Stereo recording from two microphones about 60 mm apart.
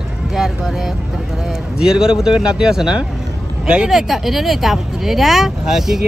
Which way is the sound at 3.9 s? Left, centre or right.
Centre.